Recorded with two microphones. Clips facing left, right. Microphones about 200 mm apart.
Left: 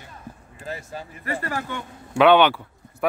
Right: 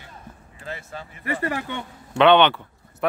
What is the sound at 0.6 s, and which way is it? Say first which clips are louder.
Speech: left 2 dB; 40° left (ahead or behind).